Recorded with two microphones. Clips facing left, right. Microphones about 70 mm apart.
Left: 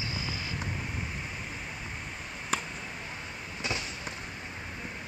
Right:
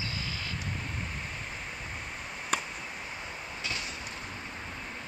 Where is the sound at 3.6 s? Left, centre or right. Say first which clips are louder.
Left 4 dB; left.